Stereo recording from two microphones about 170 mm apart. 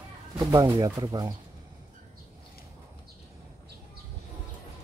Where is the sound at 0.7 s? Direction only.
20° right (ahead or behind).